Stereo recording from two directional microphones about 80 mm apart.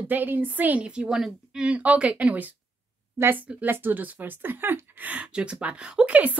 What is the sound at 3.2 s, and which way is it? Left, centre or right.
A woman's voice, right.